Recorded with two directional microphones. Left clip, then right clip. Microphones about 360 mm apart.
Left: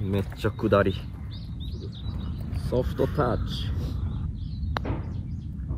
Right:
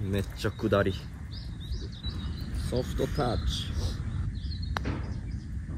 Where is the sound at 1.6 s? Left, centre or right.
Centre.